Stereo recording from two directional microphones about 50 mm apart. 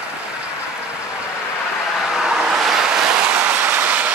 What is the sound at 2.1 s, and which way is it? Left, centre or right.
Vehicle, centre.